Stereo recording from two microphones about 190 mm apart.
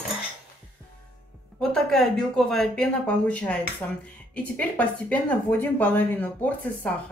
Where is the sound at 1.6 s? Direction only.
Centre (ahead or behind).